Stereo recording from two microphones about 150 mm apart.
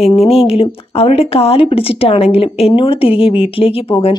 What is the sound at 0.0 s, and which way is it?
Speech, 40° left (ahead or behind).